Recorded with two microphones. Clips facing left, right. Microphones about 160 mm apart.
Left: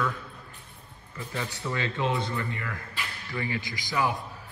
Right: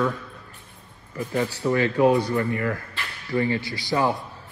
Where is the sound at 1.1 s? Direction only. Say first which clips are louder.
Right 9 dB; 15° right (ahead or behind).